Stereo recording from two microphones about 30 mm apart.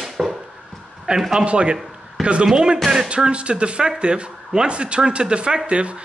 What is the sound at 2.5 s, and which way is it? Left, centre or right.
Speech, right.